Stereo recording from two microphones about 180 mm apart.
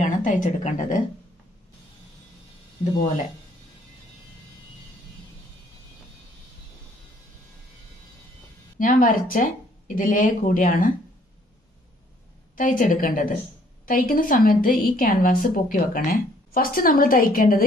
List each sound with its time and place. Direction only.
0.0 s a woman's voice: 45° left (ahead or behind)
8.7 s a woman's voice: 50° left (ahead or behind)
12.5 s a woman's voice: 50° left (ahead or behind)